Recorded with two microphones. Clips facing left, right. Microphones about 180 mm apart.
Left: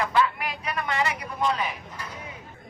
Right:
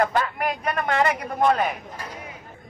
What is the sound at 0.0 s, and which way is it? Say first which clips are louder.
A man's voice: right 2 dB; 50° right (ahead or behind).